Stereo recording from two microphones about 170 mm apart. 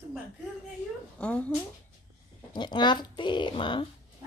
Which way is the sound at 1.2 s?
5° left (ahead or behind).